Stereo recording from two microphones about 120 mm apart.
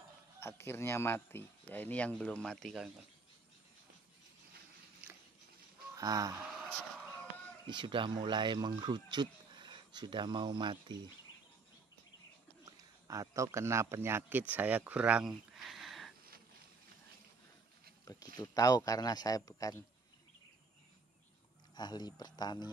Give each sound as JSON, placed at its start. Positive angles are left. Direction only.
{"t": 0.4, "sound": "speech", "side_deg": 20}
{"t": 5.9, "sound": "speech", "side_deg": -30}
{"t": 7.6, "sound": "speech", "side_deg": -40}
{"t": 12.6, "sound": "speech", "side_deg": -30}
{"t": 18.0, "sound": "speech", "side_deg": 30}
{"t": 21.7, "sound": "speech", "side_deg": 35}